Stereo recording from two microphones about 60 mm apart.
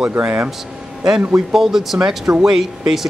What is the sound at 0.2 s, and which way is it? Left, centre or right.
Speech, right.